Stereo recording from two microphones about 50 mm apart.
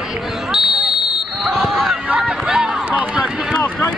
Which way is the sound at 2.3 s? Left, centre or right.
Centre.